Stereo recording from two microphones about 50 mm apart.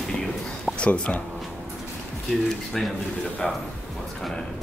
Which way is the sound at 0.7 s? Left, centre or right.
Left.